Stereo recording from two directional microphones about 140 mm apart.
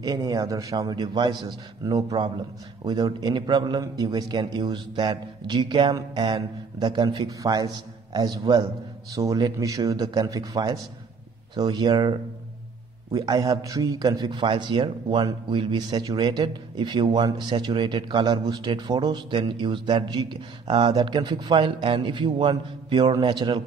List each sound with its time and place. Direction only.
0.0 s a man's voice: 25° right (ahead or behind)